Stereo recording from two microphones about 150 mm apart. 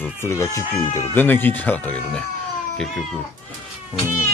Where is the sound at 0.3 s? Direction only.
20° left (ahead or behind).